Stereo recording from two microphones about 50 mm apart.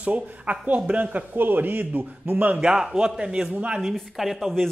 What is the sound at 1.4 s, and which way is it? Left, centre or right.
A man's voice, right.